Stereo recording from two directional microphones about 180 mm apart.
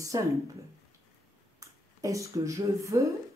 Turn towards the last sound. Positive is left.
turn(degrees=-20)  # may be behind; listen again after turning